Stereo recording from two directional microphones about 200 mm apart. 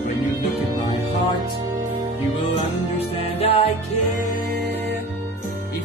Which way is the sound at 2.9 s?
30° left (ahead or behind).